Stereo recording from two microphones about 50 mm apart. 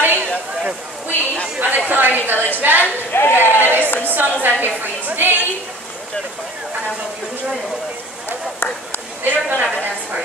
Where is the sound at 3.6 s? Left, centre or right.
Right.